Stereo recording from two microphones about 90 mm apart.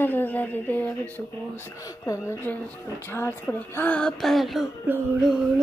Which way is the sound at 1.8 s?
40° left (ahead or behind).